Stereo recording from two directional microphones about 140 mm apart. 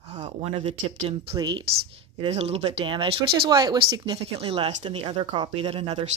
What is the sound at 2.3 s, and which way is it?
Speech, 45° right (ahead or behind).